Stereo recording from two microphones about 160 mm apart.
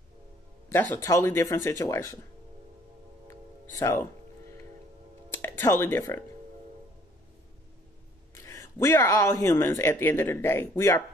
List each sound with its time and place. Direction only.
0.7 s speech: 15° left (ahead or behind)
5.3 s speech: 15° left (ahead or behind)
8.4 s speech: 20° left (ahead or behind)